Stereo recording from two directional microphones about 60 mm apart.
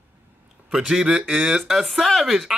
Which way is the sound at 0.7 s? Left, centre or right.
Centre.